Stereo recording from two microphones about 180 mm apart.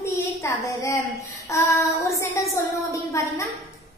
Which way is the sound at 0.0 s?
15° left (ahead or behind).